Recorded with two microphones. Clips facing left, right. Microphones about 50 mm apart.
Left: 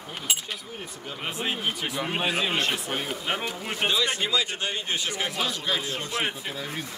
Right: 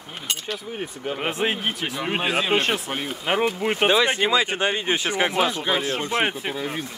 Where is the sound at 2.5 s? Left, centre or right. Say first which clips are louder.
Right 5 dB; right.